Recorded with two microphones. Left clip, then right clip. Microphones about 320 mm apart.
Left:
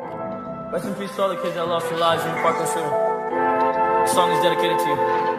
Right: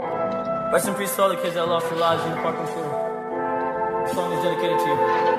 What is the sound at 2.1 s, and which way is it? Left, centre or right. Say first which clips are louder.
Music: left 3 dB; centre.